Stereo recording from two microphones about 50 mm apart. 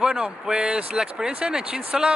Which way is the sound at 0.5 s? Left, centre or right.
Centre.